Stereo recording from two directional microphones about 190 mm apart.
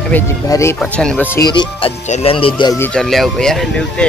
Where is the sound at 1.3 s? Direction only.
20° left (ahead or behind).